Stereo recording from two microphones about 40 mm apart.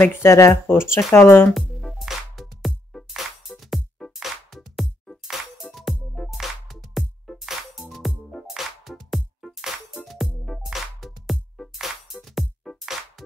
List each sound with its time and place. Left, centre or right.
0.0 s speech: left
2.0 s music: centre
5.6 s music: centre
6.3 s music: centre